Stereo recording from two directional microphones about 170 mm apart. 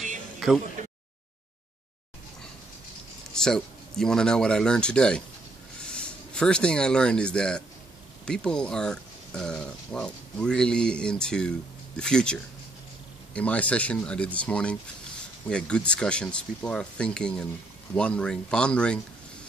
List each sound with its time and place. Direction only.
0.4 s speech: centre (ahead or behind)
0.8 s a sound: 45° right (ahead or behind)
3.3 s speech: 5° left (ahead or behind)